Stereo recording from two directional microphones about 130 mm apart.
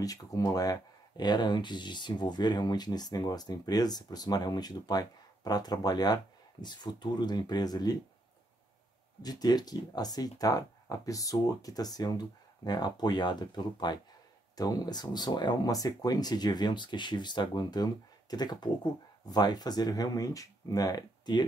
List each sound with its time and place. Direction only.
0.0 s speech: 30° left (ahead or behind)
9.2 s speech: 30° left (ahead or behind)